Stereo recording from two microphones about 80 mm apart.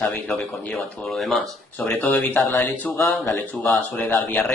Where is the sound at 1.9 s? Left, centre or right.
Left.